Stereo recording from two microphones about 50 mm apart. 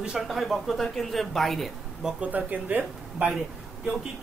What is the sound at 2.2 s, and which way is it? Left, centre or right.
Speech, right.